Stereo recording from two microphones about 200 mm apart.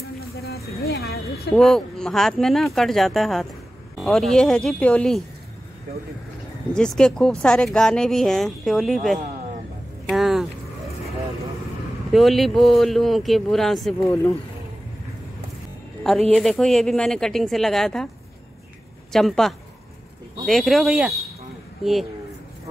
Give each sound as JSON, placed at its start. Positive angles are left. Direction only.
{"t": 0.4, "sound": "a sound", "side_deg": 50}
{"t": 1.6, "sound": "speech", "side_deg": 0}
{"t": 6.7, "sound": "speech", "side_deg": 5}
{"t": 10.0, "sound": "a sound", "side_deg": 0}
{"t": 12.1, "sound": "speech", "side_deg": 0}
{"t": 14.0, "sound": "speech", "side_deg": 10}
{"t": 16.0, "sound": "speech", "side_deg": 0}
{"t": 19.1, "sound": "speech", "side_deg": 0}